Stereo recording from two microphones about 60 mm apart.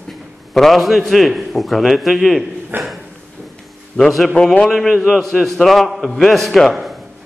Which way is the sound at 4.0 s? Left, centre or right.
Centre.